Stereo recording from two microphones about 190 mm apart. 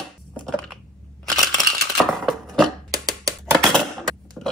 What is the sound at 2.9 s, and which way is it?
Music, 20° right (ahead or behind).